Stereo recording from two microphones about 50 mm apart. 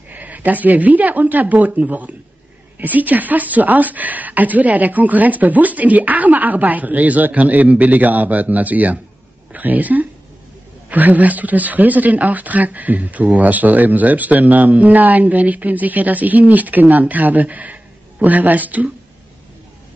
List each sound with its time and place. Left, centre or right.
0.1 s speech: right